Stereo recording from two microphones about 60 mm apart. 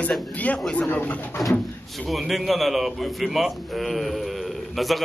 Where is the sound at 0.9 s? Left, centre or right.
Left.